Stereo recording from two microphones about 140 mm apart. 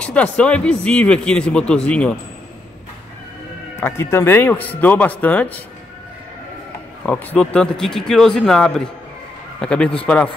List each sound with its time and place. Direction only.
0.0 s speech: 10° left (ahead or behind)
3.7 s speech: 20° left (ahead or behind)
7.1 s a man's voice: 10° left (ahead or behind)